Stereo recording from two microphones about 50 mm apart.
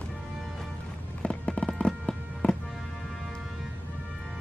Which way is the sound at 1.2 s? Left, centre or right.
Left.